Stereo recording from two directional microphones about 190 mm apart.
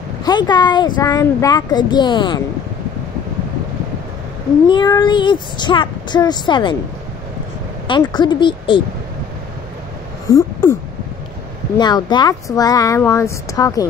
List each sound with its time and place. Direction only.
0.2 s speech: 20° left (ahead or behind)
4.6 s speech: 25° left (ahead or behind)
8.1 s speech: 25° left (ahead or behind)
10.2 s a sound: 15° left (ahead or behind)
11.8 s speech: 20° left (ahead or behind)